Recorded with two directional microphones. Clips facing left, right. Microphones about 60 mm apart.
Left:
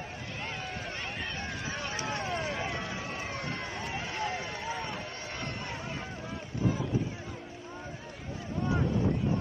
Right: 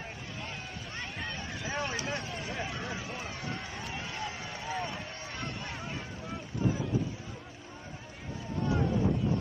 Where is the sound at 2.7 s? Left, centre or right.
Left.